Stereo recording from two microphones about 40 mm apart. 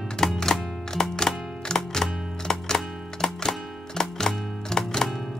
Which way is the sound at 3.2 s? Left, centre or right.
Centre.